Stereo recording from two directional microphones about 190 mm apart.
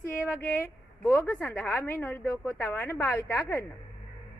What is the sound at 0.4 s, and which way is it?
A woman's voice, 10° left (ahead or behind).